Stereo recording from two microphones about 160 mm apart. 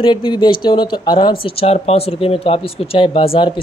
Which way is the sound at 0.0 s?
30° left (ahead or behind).